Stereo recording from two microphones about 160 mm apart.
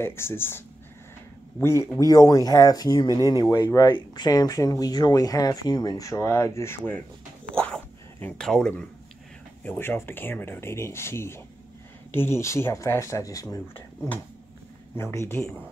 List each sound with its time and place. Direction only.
0.0 s speech: 15° left (ahead or behind)
7.6 s dog: 5° left (ahead or behind)
9.7 s speech: 15° left (ahead or behind)
15.0 s speech: 15° left (ahead or behind)